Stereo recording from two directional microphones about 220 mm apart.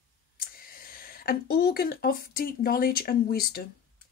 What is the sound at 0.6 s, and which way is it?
A woman's voice, 40° left (ahead or behind).